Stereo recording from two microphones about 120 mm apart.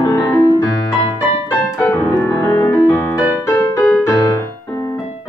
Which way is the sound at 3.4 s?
5° left (ahead or behind).